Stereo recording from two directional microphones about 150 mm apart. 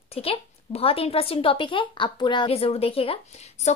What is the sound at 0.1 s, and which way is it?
A woman's voice, 40° left (ahead or behind).